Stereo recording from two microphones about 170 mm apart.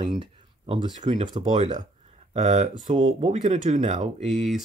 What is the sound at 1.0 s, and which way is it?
Speech, 35° right (ahead or behind).